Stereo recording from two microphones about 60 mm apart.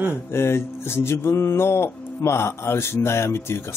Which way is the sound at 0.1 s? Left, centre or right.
Left.